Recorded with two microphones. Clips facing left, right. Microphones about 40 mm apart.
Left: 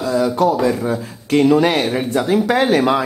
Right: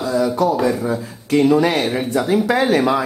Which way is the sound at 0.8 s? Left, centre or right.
Left.